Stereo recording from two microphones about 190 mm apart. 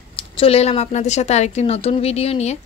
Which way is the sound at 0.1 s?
30° left (ahead or behind).